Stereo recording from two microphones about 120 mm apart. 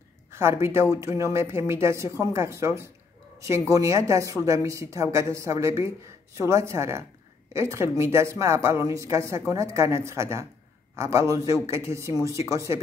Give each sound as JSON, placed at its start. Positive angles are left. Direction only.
{"t": 0.3, "sound": "a woman's voice", "side_deg": -20}